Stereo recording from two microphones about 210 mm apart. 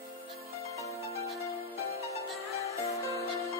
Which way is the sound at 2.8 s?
15° left (ahead or behind).